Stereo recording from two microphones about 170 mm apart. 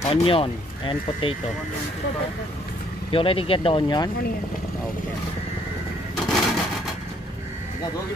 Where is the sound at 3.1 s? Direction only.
30° left (ahead or behind).